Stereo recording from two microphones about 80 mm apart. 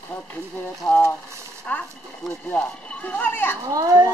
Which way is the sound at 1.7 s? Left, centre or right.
Left.